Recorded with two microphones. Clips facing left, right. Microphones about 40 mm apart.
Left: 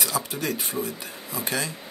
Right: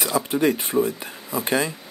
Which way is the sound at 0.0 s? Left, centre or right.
Centre.